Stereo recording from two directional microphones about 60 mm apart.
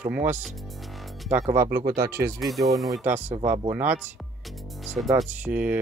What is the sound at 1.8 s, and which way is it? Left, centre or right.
Speech, right.